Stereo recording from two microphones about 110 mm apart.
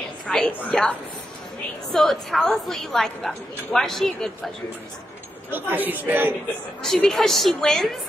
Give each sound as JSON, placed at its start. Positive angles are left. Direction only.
{"t": 0.3, "sound": "a woman's voice", "side_deg": 10}
{"t": 5.5, "sound": "a man's voice", "side_deg": -20}
{"t": 6.8, "sound": "a woman's voice", "side_deg": 5}